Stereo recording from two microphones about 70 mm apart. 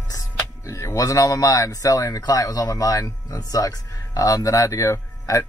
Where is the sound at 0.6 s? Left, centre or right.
Left.